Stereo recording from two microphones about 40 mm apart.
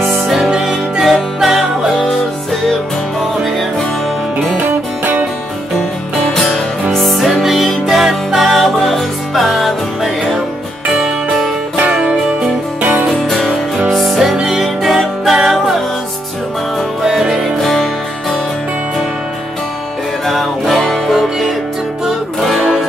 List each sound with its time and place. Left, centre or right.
0.3 s music: centre
1.4 s music: centre
6.3 s music: centre
13.8 s music: centre
14.3 s music: centre
14.6 s music: centre
17.0 s music: centre
20.2 s music: centre